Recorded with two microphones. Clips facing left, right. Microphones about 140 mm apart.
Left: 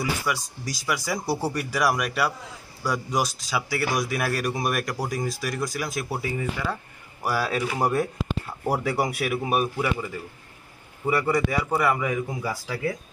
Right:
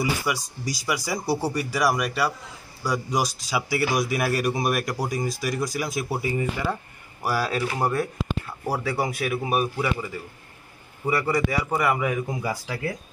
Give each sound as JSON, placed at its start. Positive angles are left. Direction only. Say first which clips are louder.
{"t": 0.0, "sound": "speech", "louder": "right 2 dB", "side_deg": -10}
{"t": 1.2, "sound": "speech", "louder": "right 1 dB", "side_deg": 5}
{"t": 7.2, "sound": "speech", "louder": "even", "side_deg": 0}
{"t": 7.8, "sound": "speech", "louder": "left 1 dB", "side_deg": 20}
{"t": 9.4, "sound": "speech", "louder": "even", "side_deg": -5}
{"t": 11.1, "sound": "speech", "louder": "even", "side_deg": -5}
{"t": 12.3, "sound": "speech", "louder": "right 2 dB", "side_deg": -15}